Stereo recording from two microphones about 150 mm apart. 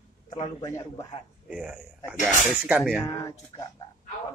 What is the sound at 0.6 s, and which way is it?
Speech, 20° left (ahead or behind).